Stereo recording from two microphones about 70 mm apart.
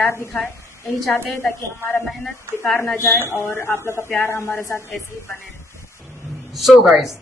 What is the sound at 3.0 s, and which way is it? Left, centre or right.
Speech, left.